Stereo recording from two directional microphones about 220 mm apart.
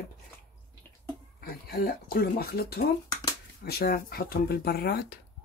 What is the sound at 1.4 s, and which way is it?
Speech, 40° left (ahead or behind).